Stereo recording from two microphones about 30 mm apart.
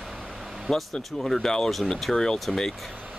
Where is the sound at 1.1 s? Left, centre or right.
Centre.